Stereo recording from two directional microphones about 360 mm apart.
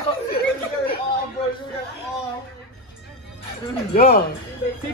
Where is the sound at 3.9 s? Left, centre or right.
Left.